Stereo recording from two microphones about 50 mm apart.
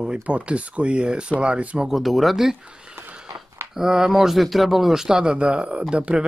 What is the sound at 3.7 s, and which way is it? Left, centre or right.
A man's voice, centre.